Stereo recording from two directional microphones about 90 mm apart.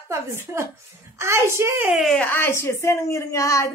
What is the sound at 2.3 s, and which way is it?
A woman's voice, 30° left (ahead or behind).